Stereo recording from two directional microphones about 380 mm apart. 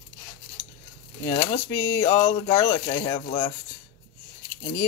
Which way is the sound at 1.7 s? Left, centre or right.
Centre.